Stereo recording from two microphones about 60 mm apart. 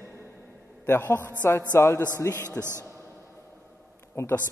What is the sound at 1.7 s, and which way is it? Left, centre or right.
Speech, left.